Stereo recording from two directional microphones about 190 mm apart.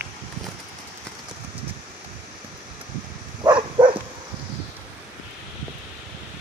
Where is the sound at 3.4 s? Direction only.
25° right (ahead or behind).